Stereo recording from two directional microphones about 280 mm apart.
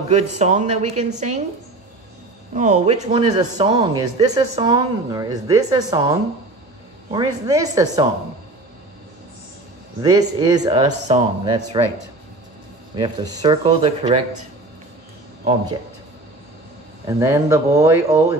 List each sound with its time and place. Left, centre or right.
0.1 s a woman's voice: right
2.5 s a man's voice: right
7.1 s a man's voice: centre
10.0 s a man's voice: centre
12.9 s a man's voice: centre
17.2 s a man's voice: centre